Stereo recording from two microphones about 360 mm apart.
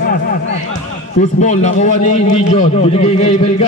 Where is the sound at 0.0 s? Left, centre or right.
Left.